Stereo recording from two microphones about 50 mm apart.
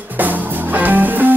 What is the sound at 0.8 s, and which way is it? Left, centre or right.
Music, right.